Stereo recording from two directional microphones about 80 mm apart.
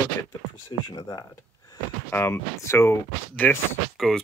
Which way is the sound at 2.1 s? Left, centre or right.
Left.